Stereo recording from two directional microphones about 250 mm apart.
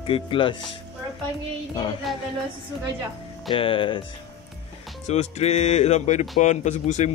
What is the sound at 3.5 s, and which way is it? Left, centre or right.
Speech, left.